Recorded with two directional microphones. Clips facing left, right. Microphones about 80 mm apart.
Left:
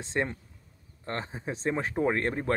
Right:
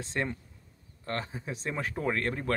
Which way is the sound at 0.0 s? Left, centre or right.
Left.